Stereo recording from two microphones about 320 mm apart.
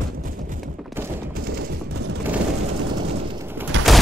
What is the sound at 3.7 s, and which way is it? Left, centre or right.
Bird, right.